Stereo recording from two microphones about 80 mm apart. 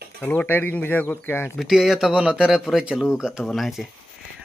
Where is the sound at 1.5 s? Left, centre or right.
Centre.